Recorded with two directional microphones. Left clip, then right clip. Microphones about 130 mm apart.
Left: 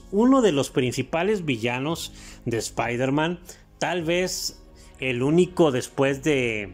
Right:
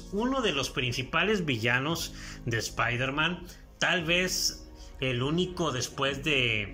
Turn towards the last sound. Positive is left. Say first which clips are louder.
# left 3 dB
turn(degrees=50)  # may be behind; listen again after turning